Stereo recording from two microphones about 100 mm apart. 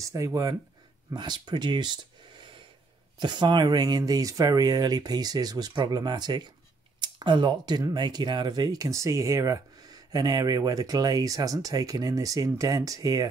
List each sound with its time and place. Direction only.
0.0 s speech: 35° right (ahead or behind)
1.1 s speech: 45° right (ahead or behind)
3.2 s speech: 50° right (ahead or behind)